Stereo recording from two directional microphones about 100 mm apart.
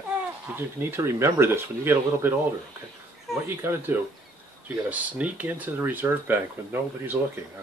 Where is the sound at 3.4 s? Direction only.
25° right (ahead or behind).